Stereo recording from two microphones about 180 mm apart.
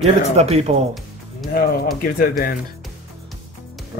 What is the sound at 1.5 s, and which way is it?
Speech, 55° left (ahead or behind).